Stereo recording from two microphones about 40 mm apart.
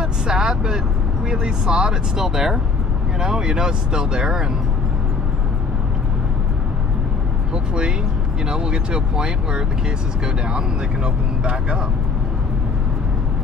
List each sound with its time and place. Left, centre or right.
0.0 s vehicle: centre
1.3 s speech: right
2.1 s speech: centre
7.5 s speech: right